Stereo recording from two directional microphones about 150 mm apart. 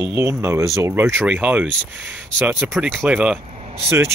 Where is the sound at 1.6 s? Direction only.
5° left (ahead or behind).